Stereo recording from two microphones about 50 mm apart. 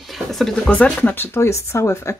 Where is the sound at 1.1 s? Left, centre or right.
Left.